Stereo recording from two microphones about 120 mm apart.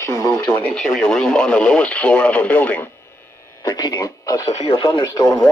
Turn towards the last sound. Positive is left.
turn(degrees=40)  # may be behind; listen again after turning